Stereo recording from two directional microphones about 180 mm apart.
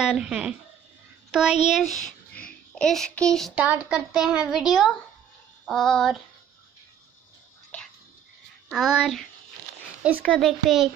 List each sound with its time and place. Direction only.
0.0 s a child's voice: 5° right (ahead or behind)
1.9 s a child's voice: 45° left (ahead or behind)
2.3 s a child's voice: 5° left (ahead or behind)
8.6 s a child's voice: 5° right (ahead or behind)
10.2 s a child's voice: centre (ahead or behind)